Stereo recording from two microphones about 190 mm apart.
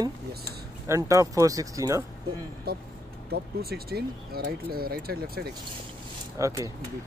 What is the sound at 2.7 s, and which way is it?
Speech, 55° right (ahead or behind).